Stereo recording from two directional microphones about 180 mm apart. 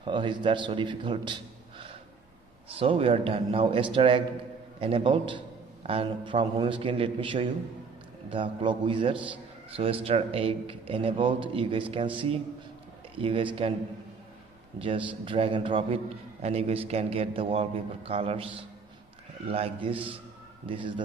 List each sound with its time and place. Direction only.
0.0 s a man's voice: 25° right (ahead or behind)
14.8 s a man's voice: 30° right (ahead or behind)